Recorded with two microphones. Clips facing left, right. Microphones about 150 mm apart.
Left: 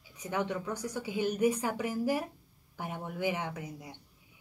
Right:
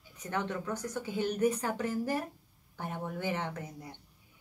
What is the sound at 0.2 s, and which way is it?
A woman's voice, 10° left (ahead or behind).